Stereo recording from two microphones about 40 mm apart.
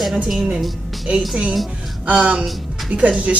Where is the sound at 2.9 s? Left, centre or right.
Right.